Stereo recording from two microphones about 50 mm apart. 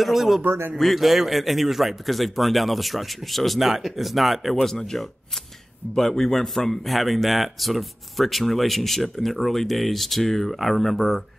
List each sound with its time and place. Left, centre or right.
0.0 s speech: centre
0.4 s a man's voice: right
0.7 s speech: centre